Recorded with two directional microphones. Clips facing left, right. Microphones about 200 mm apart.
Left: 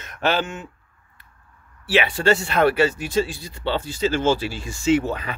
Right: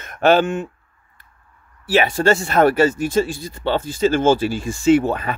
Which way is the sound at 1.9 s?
45° right (ahead or behind).